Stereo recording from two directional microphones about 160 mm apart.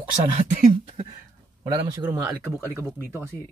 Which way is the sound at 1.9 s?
15° right (ahead or behind).